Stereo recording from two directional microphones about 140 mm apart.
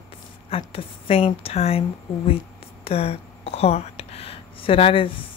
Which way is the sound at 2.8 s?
45° left (ahead or behind).